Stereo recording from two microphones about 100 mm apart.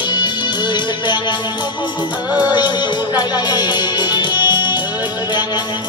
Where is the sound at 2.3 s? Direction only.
45° left (ahead or behind).